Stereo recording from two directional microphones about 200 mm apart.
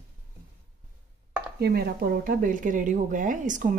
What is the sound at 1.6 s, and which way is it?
Speech, 50° right (ahead or behind).